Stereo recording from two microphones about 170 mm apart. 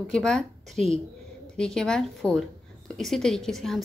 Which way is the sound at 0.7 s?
40° right (ahead or behind).